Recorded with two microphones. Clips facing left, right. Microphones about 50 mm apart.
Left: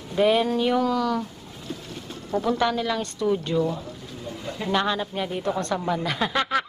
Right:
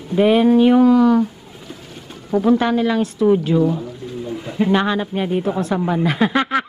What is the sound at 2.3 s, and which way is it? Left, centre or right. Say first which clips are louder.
Speech: right 7 dB; centre.